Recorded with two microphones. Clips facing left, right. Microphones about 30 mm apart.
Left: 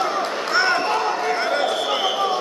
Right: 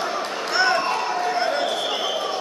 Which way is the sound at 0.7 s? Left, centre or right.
Centre.